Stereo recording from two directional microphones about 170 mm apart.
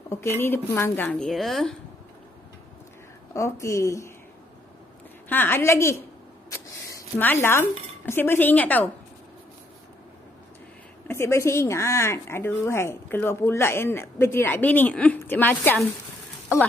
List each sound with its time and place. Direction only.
0.1 s speech: 15° left (ahead or behind)
3.3 s speech: 15° left (ahead or behind)
5.3 s speech: 10° left (ahead or behind)
6.5 s a sound: 20° left (ahead or behind)
7.4 s speech: 15° left (ahead or behind)
11.1 s speech: 15° left (ahead or behind)